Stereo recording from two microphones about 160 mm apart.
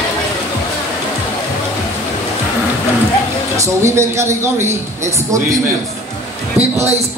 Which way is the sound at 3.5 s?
20° right (ahead or behind).